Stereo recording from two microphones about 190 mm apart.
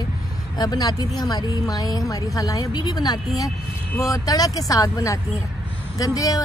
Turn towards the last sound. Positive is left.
turn(degrees=20)  # may be behind; listen again after turning